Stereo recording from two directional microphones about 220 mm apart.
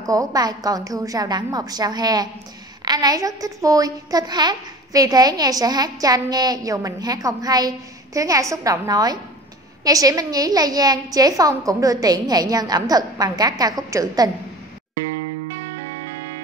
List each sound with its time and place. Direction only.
0.0 s a woman's voice: 15° right (ahead or behind)